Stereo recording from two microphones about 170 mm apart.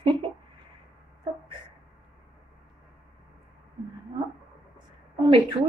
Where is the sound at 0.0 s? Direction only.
30° right (ahead or behind).